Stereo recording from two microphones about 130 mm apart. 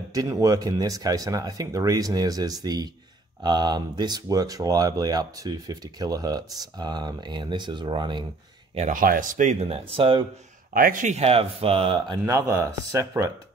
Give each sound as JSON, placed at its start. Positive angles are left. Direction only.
{"t": 0.1, "sound": "speech", "side_deg": -25}
{"t": 8.7, "sound": "speech", "side_deg": -80}
{"t": 10.7, "sound": "speech", "side_deg": -90}
{"t": 12.3, "sound": "speech", "side_deg": -25}